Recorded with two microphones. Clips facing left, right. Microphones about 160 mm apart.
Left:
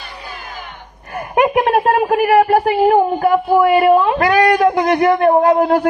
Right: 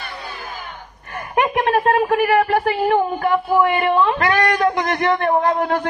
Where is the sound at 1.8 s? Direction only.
35° left (ahead or behind).